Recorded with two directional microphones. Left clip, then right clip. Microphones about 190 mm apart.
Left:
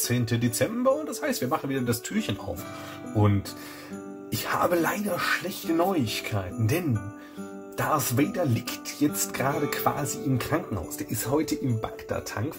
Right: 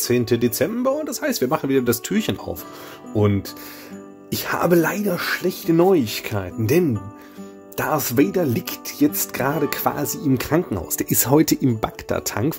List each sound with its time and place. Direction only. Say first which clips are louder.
0.0 s speech: right 9 dB; 65° right (ahead or behind)
4.3 s speech: right 5 dB; 65° right (ahead or behind)